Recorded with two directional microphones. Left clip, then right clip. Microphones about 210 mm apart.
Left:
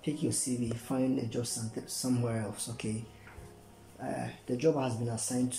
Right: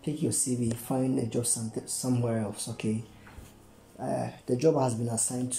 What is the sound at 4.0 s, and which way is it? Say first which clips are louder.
Speech: right 6 dB; 20° right (ahead or behind).